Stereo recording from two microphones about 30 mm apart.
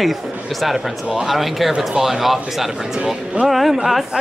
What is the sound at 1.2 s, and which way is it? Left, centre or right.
A man's voice, centre.